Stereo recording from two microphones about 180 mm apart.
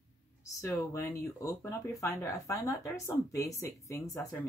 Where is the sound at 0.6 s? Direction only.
15° left (ahead or behind).